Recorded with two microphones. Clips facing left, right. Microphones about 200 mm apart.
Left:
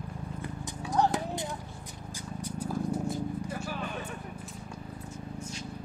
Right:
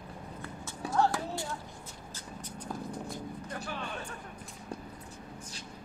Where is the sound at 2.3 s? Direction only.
10° left (ahead or behind).